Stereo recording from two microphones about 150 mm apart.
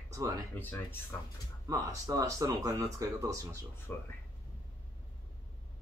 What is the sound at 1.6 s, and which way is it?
Speech, 20° right (ahead or behind).